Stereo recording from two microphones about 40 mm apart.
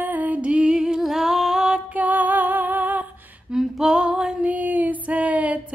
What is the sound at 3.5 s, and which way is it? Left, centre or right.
Female singing, centre.